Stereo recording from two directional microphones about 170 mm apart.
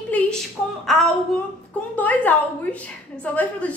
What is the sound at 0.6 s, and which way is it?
Speech, 5° right (ahead or behind).